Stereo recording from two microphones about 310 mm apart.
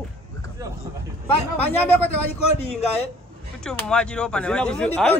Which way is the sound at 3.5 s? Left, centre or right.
Centre.